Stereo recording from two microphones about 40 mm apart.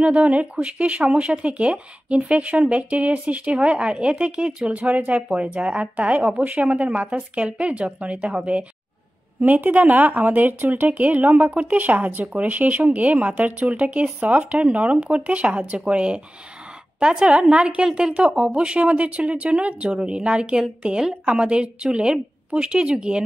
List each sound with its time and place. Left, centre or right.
0.0 s speech: right
9.4 s a woman's voice: right